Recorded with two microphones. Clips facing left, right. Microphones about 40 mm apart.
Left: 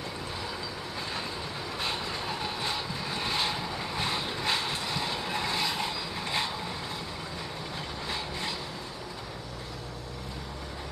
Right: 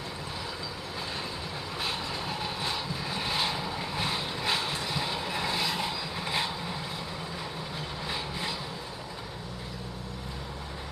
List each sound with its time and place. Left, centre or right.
1.8 s vehicle: centre
8.1 s vehicle: centre